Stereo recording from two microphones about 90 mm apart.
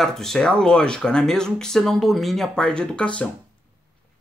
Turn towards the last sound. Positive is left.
turn(degrees=10)  # may be behind; listen again after turning